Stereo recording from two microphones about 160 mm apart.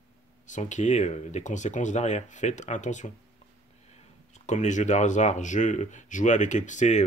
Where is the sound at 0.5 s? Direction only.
50° left (ahead or behind).